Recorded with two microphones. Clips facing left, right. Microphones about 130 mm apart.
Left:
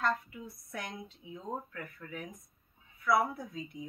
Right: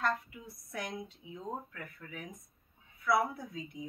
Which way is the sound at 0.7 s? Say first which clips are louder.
Right 3 dB; 15° right (ahead or behind).